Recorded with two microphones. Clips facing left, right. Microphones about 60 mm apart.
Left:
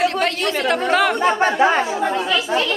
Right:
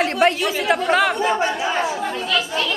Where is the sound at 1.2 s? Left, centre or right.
Left.